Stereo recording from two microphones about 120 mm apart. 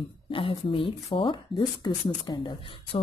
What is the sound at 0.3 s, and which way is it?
Speech, 45° left (ahead or behind).